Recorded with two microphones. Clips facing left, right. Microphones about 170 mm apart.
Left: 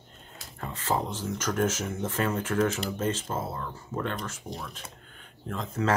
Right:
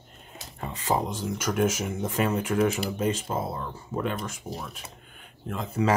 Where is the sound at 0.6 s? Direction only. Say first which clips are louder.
Right 2 dB; 15° right (ahead or behind).